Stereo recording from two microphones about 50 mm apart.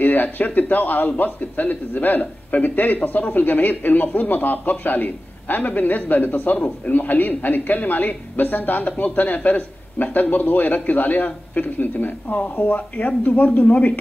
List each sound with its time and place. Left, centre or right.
0.0 s a man's voice: left